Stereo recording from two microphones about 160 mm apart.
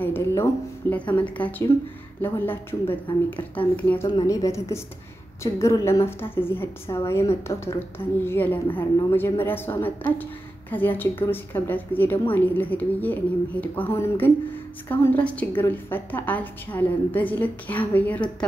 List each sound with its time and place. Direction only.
0.0 s a woman's voice: 15° left (ahead or behind)